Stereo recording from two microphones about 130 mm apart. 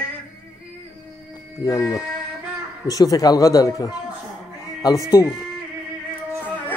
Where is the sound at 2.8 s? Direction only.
30° left (ahead or behind).